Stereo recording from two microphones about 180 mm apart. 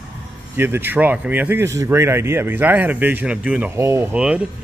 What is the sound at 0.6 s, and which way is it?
Speech, 10° right (ahead or behind).